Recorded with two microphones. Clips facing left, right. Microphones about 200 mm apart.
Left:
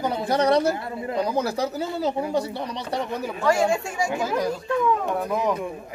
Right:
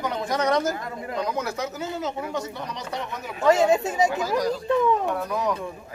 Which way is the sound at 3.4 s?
20° right (ahead or behind).